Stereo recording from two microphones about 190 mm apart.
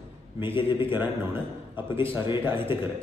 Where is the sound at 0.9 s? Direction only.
10° right (ahead or behind).